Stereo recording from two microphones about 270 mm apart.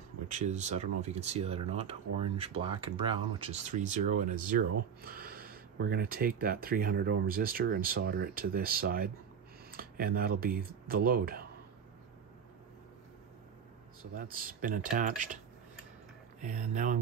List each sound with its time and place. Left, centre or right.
0.3 s speech: right
14.1 s speech: right
16.3 s speech: right